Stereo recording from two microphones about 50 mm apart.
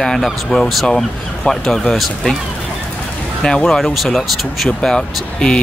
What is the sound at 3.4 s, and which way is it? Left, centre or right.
Speech, centre.